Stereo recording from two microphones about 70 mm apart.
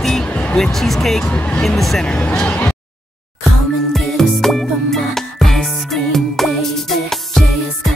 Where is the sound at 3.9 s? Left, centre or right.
Centre.